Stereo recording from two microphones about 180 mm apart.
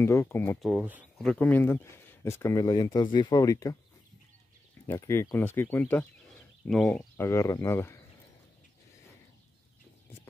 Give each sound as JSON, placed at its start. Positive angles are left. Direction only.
{"t": 0.0, "sound": "speech", "side_deg": 15}
{"t": 0.6, "sound": "speech", "side_deg": -5}
{"t": 4.8, "sound": "speech", "side_deg": 15}
{"t": 7.2, "sound": "speech", "side_deg": 15}